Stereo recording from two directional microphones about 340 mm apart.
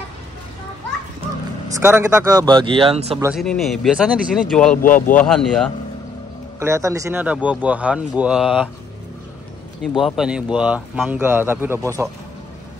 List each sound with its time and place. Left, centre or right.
1.8 s speech: centre
3.3 s speech: centre
4.8 s speech: left
5.1 s speech: centre
6.6 s speech: centre
9.9 s speech: centre